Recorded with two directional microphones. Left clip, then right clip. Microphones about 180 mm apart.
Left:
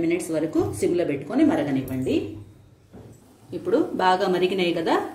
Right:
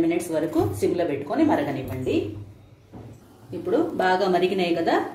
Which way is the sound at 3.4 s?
45° left (ahead or behind).